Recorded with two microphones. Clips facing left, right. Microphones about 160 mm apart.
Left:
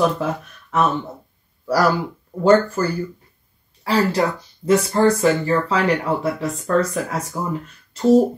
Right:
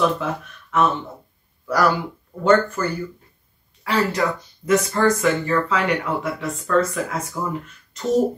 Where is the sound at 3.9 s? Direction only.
30° left (ahead or behind).